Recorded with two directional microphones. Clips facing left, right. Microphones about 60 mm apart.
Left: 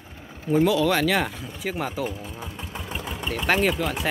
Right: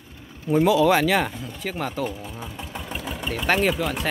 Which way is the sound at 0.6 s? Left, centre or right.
Centre.